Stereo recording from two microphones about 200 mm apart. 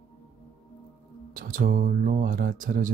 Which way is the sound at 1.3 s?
45° right (ahead or behind).